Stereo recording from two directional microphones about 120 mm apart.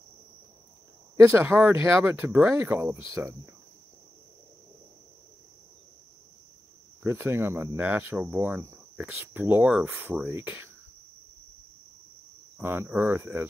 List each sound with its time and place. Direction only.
1.2 s speech: 20° right (ahead or behind)
7.0 s speech: 20° right (ahead or behind)
12.5 s speech: 20° right (ahead or behind)